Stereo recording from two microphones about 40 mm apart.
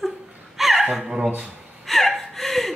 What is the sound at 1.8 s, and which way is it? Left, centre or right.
Gasp, centre.